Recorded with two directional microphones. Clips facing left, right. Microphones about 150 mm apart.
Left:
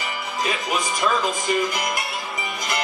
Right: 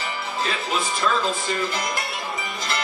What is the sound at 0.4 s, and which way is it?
Speech, 15° left (ahead or behind).